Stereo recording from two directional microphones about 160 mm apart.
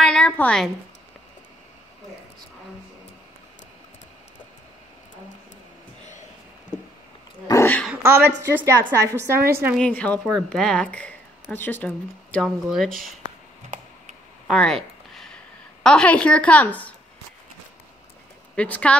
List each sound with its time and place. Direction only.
0.0 s a sound: 5° left (ahead or behind)
7.4 s dog: 15° left (ahead or behind)
7.9 s a woman's voice: 15° right (ahead or behind)
9.8 s a woman's voice: 10° left (ahead or behind)
12.4 s speech: 5° right (ahead or behind)
14.5 s speech: 5° left (ahead or behind)
15.8 s a woman's voice: 5° left (ahead or behind)
18.6 s a woman's voice: 10° left (ahead or behind)